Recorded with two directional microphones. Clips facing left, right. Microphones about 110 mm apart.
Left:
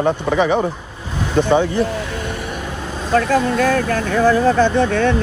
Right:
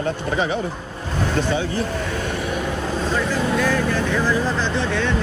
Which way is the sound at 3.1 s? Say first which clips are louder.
Left 8 dB; 60° left (ahead or behind).